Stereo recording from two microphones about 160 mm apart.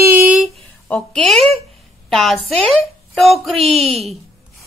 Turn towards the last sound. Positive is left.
turn(degrees=0)  # may be behind; listen again after turning